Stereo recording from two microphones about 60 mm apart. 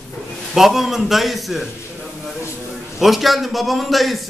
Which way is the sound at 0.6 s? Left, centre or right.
Centre.